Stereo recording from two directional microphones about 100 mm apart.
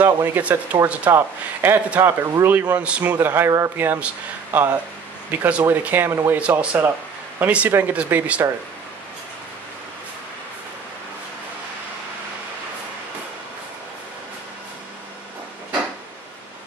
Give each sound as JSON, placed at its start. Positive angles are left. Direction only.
{"t": 0.0, "sound": "a man's voice", "side_deg": -20}